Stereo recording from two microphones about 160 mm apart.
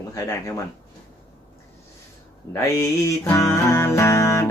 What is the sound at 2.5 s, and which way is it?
Music, 20° left (ahead or behind).